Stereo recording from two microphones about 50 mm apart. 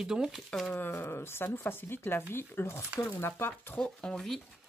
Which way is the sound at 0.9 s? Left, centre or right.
Left.